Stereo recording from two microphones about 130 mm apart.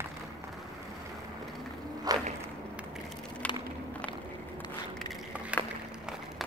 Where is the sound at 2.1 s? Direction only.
30° right (ahead or behind).